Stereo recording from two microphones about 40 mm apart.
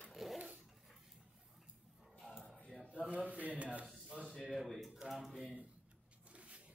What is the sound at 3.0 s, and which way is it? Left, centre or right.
Speech, right.